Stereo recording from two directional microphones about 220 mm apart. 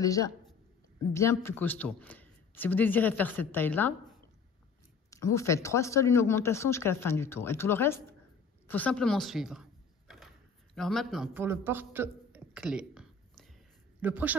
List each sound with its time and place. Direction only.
0.0 s speech: 15° left (ahead or behind)
5.1 s speech: 15° left (ahead or behind)
8.6 s a sound: 5° left (ahead or behind)
14.0 s a man's voice: 5° right (ahead or behind)